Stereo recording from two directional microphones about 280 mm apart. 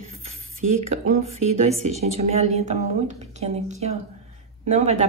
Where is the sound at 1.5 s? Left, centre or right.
Right.